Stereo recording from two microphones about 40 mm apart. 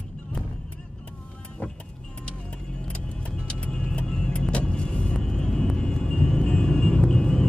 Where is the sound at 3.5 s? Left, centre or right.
Left.